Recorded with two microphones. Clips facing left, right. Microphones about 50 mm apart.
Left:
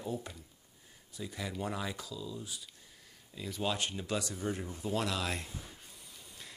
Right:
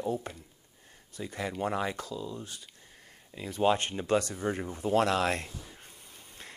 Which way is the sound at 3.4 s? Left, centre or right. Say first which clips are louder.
Right 8 dB; right.